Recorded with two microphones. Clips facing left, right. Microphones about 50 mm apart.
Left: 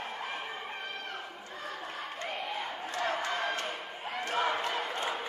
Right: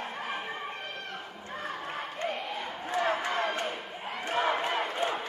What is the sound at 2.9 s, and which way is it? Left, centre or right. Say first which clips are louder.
Crowd: right 4 dB; centre.